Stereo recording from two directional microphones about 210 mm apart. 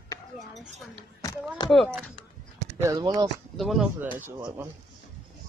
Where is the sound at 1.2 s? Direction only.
15° left (ahead or behind).